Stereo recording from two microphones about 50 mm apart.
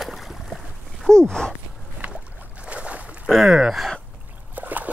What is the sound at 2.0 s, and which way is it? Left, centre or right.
Boat, right.